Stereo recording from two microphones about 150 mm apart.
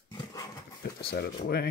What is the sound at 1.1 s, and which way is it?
Speech, 90° left.